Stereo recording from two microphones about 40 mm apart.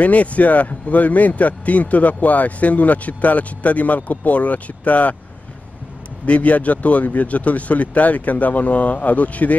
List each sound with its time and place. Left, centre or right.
0.0 s a man's voice: left
6.2 s a man's voice: left